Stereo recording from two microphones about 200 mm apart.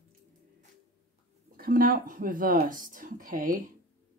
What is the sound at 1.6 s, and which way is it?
Speech, 45° right (ahead or behind).